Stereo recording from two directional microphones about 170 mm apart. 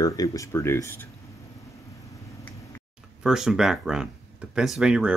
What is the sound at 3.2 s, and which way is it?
Speech, 5° right (ahead or behind).